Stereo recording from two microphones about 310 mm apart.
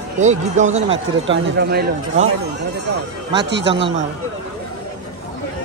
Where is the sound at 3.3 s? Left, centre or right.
Right.